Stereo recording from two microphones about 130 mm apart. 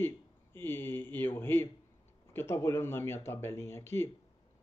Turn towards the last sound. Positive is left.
turn(degrees=20)  # may be behind; listen again after turning